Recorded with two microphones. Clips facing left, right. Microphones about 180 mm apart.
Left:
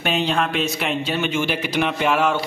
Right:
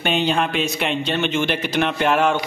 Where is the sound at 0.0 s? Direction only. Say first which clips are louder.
Right 1 dB; centre (ahead or behind).